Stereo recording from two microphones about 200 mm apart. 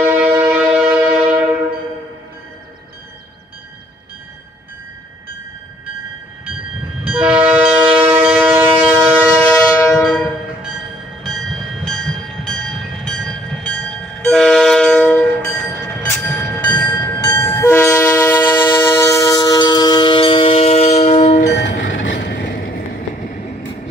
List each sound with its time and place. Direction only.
0.1 s a sound: 10° right (ahead or behind)
7.1 s train: 5° right (ahead or behind)
7.9 s shofar: 10° right (ahead or behind)
9.4 s train: 5° left (ahead or behind); by 21.5 s 35° left (ahead or behind)
21.5 s train: 55° left (ahead or behind)